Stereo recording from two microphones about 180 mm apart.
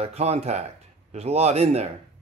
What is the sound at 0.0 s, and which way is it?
A man's voice, 35° right (ahead or behind).